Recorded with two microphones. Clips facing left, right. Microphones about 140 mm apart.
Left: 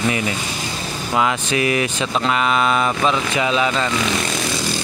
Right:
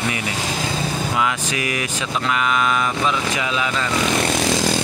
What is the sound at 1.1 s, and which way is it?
Mantra, 30° left (ahead or behind).